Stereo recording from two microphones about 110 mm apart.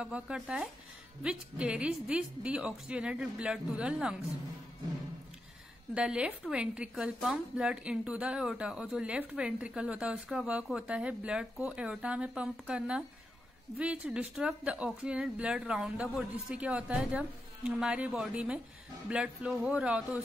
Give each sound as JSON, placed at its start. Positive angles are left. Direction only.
{"t": 0.0, "sound": "a woman's voice", "side_deg": -10}
{"t": 5.9, "sound": "a woman's voice", "side_deg": -10}